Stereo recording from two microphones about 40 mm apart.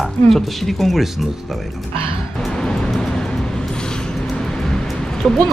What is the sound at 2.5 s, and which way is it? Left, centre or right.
Music, centre.